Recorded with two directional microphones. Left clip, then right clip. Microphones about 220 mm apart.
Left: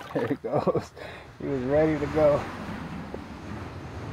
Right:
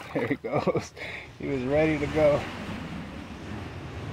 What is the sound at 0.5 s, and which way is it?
Speech, 10° left (ahead or behind).